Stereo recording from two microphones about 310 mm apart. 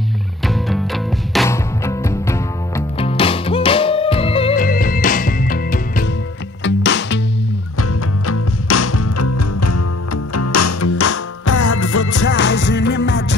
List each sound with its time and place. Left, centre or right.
0.5 s music: centre; by 7.2 s left
8.3 s music: left
12.3 s music: left